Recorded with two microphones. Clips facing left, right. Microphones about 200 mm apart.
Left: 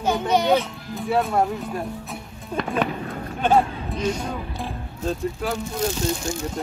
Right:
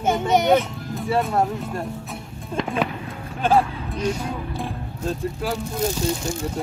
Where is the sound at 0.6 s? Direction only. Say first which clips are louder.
Right 2 dB; centre (ahead or behind).